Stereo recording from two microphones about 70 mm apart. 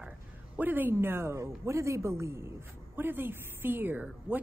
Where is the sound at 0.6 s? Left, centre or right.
Right.